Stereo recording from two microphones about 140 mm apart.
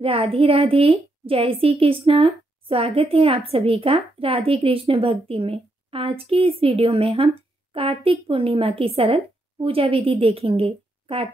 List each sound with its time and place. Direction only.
0.0 s a woman's voice: 40° right (ahead or behind)